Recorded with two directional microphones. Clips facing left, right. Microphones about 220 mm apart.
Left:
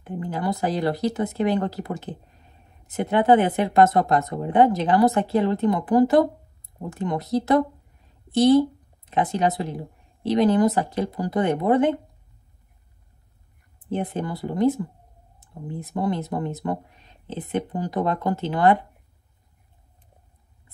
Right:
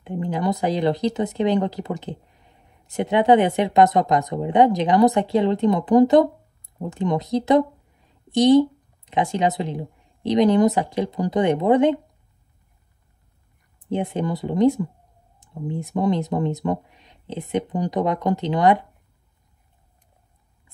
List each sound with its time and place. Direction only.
0.0 s a woman's voice: 20° right (ahead or behind)
13.8 s speech: 15° right (ahead or behind)